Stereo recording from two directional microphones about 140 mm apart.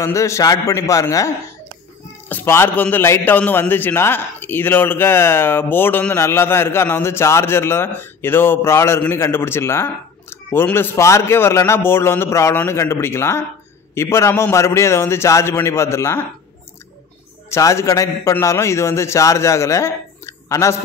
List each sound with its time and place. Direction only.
0.0 s a man's voice: 20° left (ahead or behind)
17.5 s a man's voice: 20° left (ahead or behind)